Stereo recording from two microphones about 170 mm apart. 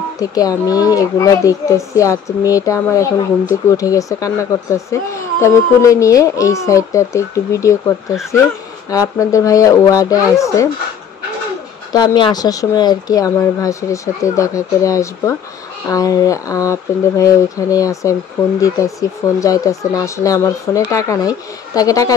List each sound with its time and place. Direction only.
0.2 s speech: 20° left (ahead or behind)
11.9 s speech: 25° left (ahead or behind)